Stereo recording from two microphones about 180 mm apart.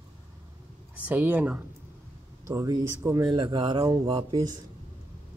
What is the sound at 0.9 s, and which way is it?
Speech, 10° right (ahead or behind).